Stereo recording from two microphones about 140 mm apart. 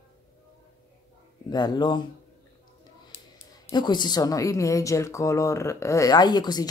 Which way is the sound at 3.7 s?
30° left (ahead or behind).